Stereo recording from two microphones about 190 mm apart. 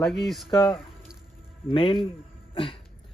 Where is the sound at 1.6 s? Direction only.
30° left (ahead or behind).